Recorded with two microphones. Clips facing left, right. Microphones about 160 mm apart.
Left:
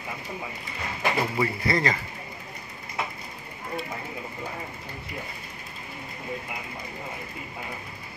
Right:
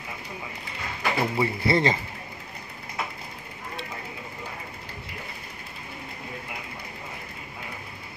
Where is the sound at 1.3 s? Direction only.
25° right (ahead or behind).